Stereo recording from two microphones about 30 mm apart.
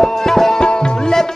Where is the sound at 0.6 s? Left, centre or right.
Left.